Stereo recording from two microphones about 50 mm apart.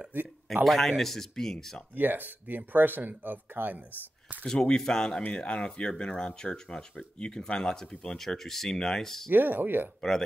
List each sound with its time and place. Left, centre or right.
0.1 s speech: right
0.7 s speech: centre
2.0 s speech: right
4.5 s speech: centre
9.3 s speech: right